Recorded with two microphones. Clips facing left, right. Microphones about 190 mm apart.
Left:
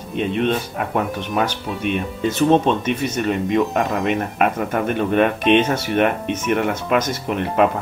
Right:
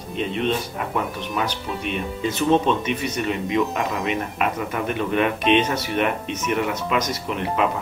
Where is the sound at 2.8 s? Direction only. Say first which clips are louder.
Left 4 dB; 50° left (ahead or behind).